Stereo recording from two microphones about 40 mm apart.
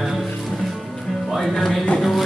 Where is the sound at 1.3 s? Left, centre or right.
Centre.